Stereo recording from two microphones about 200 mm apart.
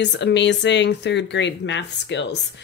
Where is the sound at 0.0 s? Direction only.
60° left (ahead or behind).